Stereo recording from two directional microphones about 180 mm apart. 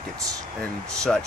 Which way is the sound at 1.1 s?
5° left (ahead or behind).